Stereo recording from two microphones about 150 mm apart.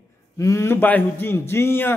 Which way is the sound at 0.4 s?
20° left (ahead or behind).